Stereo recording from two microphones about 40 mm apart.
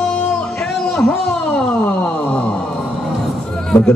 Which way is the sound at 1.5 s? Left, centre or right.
Left.